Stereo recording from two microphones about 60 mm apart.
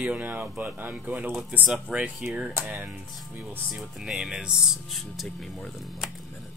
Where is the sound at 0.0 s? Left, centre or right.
Right.